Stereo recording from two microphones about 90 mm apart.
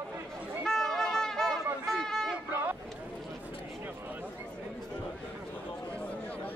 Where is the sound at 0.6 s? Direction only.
5° left (ahead or behind).